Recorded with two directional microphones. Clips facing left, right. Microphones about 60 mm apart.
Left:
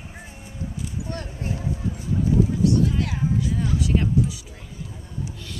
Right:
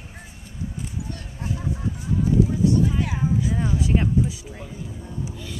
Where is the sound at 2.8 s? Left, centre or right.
Centre.